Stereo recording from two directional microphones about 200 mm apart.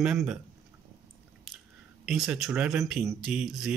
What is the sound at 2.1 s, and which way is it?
Speech, centre (ahead or behind).